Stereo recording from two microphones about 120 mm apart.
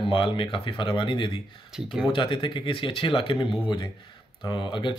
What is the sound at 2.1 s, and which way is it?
Speech, 45° left (ahead or behind).